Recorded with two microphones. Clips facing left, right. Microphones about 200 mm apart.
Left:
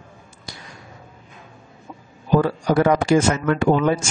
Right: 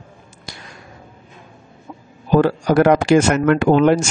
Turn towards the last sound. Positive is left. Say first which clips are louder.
# right 5 dB
turn(degrees=-70)  # may be behind; listen again after turning